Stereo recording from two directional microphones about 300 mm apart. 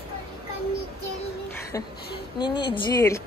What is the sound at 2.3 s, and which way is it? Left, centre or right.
Speech, centre.